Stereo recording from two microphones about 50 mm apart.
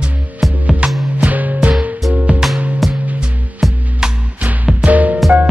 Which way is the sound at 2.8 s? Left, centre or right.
Centre.